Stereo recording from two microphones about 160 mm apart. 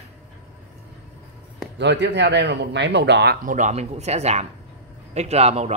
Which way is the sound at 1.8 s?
90° right.